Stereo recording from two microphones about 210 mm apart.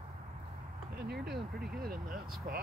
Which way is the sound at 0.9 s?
50° right (ahead or behind).